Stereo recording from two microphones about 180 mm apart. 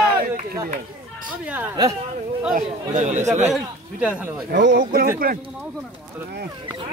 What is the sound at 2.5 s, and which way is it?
Speech, 40° right (ahead or behind).